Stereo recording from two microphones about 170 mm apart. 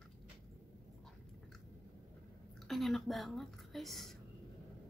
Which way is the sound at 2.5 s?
Centre (ahead or behind).